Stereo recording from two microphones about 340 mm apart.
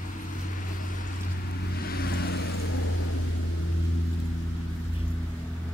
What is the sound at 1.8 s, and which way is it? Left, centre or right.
Vehicle, left.